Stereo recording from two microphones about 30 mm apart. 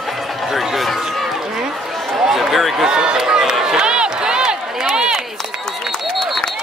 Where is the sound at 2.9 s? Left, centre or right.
Right.